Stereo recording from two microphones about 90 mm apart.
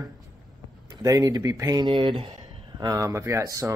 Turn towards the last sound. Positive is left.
turn(degrees=-40)  # may be behind; listen again after turning